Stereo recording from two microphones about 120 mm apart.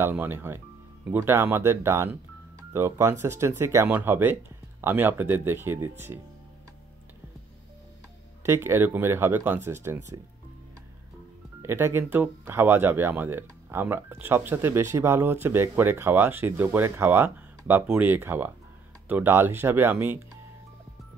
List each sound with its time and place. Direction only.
0.0 s speech: 15° right (ahead or behind)
8.4 s speech: 20° right (ahead or behind)
11.6 s speech: 20° right (ahead or behind)